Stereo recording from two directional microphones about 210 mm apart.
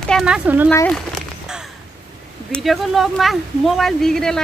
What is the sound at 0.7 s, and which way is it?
Speech, 5° left (ahead or behind).